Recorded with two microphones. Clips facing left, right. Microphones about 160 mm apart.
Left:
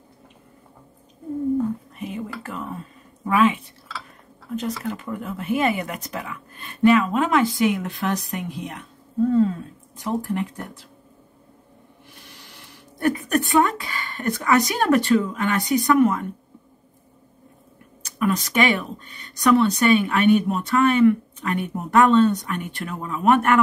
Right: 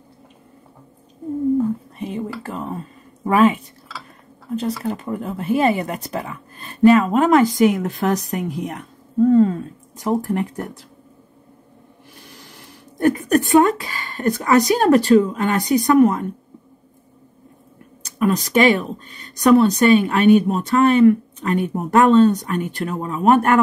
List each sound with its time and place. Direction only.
2.0 s whispering: 30° right (ahead or behind)
2.4 s speech: 30° right (ahead or behind)
4.6 s speech: 30° right (ahead or behind)
13.1 s speech: 40° right (ahead or behind)
18.2 s speech: 35° right (ahead or behind)